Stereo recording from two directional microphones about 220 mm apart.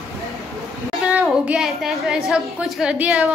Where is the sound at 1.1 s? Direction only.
5° right (ahead or behind).